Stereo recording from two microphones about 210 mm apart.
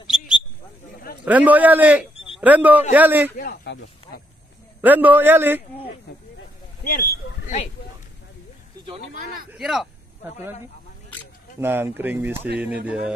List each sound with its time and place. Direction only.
1.2 s a man's voice: 5° right (ahead or behind)
3.3 s a sound: 45° left (ahead or behind)
4.8 s a man's voice: 10° right (ahead or behind)
6.8 s a sound: 40° left (ahead or behind)
9.1 s speech: 40° right (ahead or behind)
9.5 s speech: 5° right (ahead or behind)
11.6 s a man's voice: 10° right (ahead or behind)